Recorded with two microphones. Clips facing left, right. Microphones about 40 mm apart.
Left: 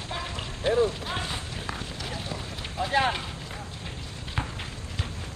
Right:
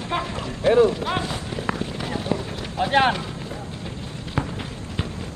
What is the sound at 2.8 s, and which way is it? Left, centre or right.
Speech, right.